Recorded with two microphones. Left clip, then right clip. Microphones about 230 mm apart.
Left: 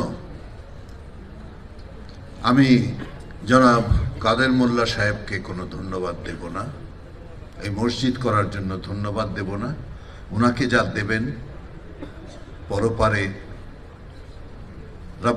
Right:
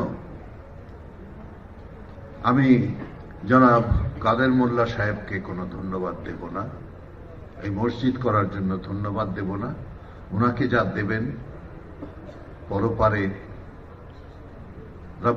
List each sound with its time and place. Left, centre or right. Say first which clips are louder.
2.4 s a man's voice: left 2 dB; left
7.6 s a man's voice: left 2 dB; left
12.6 s a man's voice: left 1 dB; left